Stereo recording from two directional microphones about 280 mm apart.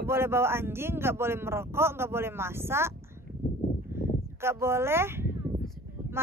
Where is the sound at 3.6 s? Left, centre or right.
Left.